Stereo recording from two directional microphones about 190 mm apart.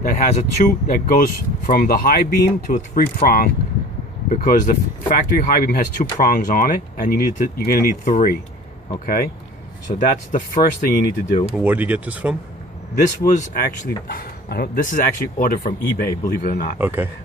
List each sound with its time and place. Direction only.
0.2 s speech: 45° left (ahead or behind)
11.5 s speech: 10° right (ahead or behind)
12.9 s speech: 45° left (ahead or behind)
16.7 s speech: 10° right (ahead or behind)